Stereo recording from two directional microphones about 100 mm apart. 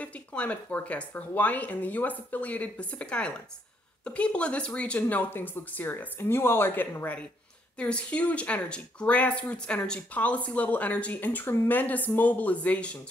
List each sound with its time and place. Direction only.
0.0 s speech: 15° left (ahead or behind)